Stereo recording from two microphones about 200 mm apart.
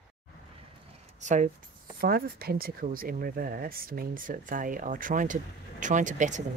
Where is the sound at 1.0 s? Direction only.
35° right (ahead or behind).